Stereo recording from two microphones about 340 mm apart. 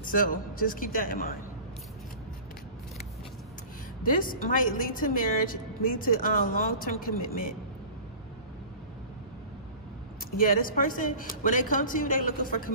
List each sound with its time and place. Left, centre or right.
0.1 s a woman's voice: left
4.0 s a woman's voice: left
10.3 s a woman's voice: left